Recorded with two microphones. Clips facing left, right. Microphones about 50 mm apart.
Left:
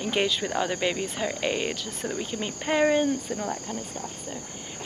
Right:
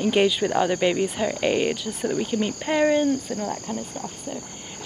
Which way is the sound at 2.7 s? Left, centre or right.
Centre.